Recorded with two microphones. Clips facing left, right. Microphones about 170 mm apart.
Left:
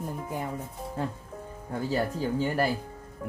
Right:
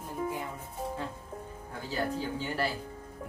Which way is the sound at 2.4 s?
50° left (ahead or behind).